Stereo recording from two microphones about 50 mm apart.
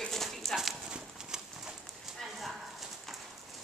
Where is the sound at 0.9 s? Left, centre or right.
Centre.